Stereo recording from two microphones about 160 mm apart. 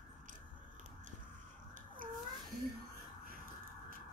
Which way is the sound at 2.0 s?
60° right (ahead or behind).